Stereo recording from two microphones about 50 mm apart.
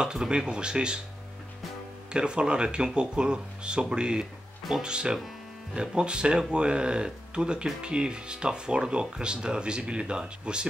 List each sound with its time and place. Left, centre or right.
0.0 s speech: centre
2.1 s speech: centre